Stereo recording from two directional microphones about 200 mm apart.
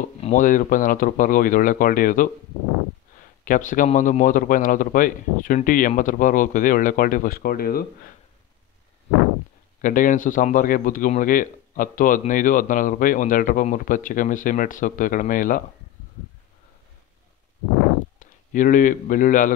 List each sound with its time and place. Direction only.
0.2 s speech: 40° left (ahead or behind)
3.4 s speech: 40° left (ahead or behind)
9.8 s speech: 40° left (ahead or behind)
18.2 s speech: 40° left (ahead or behind)